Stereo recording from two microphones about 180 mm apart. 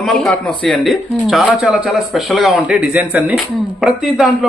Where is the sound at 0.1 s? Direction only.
Centre (ahead or behind).